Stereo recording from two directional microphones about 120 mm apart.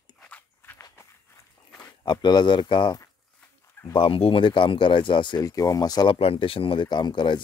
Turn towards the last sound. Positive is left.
turn(degrees=40)  # may be behind; listen again after turning